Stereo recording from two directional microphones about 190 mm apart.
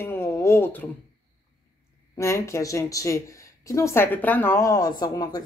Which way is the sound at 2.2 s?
15° left (ahead or behind).